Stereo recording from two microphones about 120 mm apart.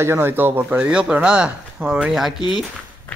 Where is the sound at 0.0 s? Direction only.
20° right (ahead or behind).